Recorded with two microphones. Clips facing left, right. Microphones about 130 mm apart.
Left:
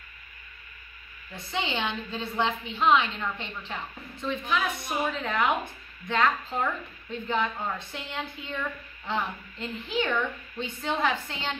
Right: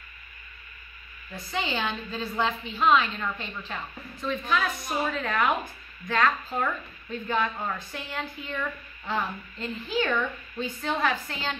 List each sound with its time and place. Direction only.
1.3 s a woman's voice: 25° left (ahead or behind)